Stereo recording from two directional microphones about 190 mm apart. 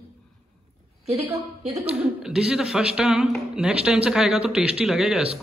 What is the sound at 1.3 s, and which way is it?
Speech, 15° right (ahead or behind).